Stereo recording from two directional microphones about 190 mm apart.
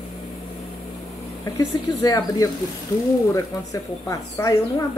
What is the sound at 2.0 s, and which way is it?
Speech, 20° left (ahead or behind).